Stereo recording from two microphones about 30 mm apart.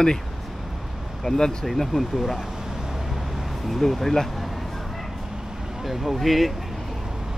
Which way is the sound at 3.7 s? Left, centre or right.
Centre.